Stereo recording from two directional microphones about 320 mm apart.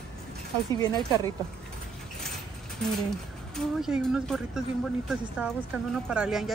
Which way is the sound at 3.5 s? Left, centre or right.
Centre.